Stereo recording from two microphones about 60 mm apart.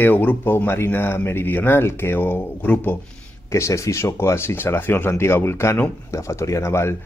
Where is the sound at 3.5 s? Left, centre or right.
Left.